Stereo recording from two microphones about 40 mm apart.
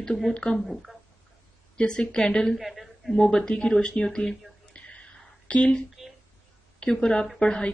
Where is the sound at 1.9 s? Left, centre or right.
Left.